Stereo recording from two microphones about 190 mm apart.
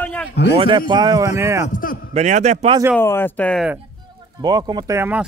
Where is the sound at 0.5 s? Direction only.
25° right (ahead or behind).